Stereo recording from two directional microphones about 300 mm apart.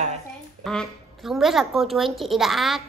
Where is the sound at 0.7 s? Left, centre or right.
Centre.